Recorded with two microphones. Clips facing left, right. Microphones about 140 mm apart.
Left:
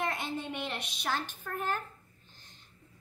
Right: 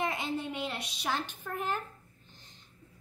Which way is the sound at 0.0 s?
10° right (ahead or behind).